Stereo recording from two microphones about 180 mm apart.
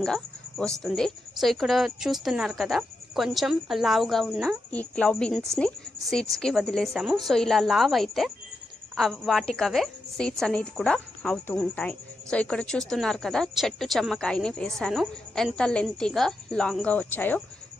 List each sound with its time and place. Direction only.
0.0 s a woman's voice: 5° left (ahead or behind)